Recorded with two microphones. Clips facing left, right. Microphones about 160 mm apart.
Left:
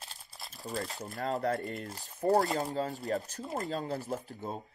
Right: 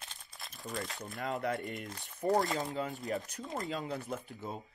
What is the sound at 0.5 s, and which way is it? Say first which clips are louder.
Speech: left 3 dB; 35° left (ahead or behind).